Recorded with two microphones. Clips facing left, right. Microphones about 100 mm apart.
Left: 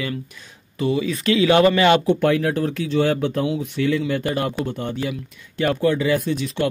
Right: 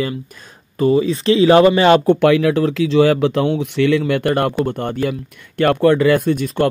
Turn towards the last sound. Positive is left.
turn(degrees=-50)  # may be behind; listen again after turning